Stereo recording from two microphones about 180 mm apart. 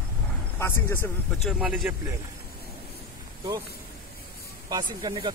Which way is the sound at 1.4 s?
5° right (ahead or behind).